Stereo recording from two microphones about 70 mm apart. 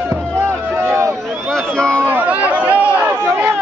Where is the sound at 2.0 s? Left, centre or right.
Right.